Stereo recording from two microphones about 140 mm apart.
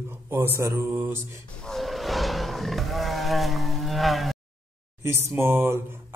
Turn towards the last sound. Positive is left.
turn(degrees=-15)  # may be behind; listen again after turning